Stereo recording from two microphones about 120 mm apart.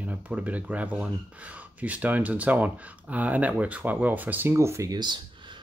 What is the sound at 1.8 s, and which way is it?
Speech, 10° right (ahead or behind).